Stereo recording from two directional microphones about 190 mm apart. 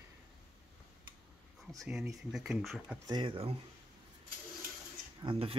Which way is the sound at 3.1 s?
25° right (ahead or behind).